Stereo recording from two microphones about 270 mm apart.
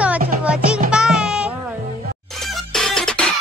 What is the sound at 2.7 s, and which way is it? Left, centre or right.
Music, centre.